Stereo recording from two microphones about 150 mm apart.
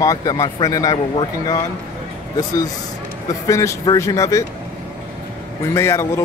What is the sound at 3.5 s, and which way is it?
Speech, 20° left (ahead or behind).